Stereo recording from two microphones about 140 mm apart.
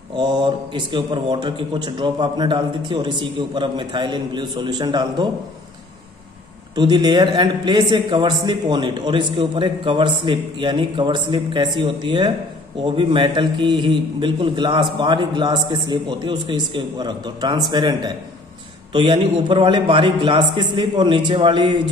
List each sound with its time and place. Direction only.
0.1 s a man's voice: 30° right (ahead or behind)
6.7 s a man's voice: 30° right (ahead or behind)